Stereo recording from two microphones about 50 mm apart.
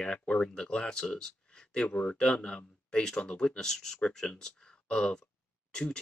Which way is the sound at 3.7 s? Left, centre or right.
Centre.